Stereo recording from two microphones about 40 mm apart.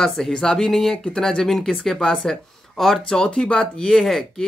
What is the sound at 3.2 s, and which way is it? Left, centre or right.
Speech, left.